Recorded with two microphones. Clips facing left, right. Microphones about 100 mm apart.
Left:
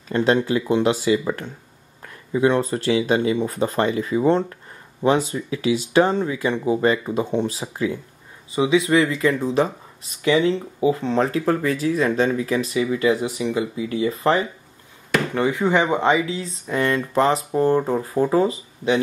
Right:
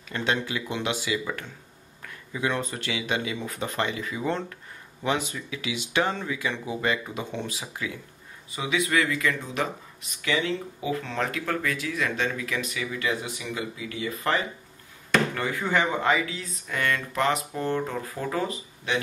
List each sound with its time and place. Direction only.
0.1 s speech: 35° left (ahead or behind)